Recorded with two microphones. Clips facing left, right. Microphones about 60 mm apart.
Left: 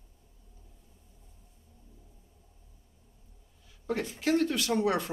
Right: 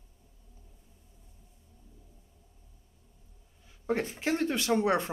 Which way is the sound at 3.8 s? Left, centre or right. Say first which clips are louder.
Even; right.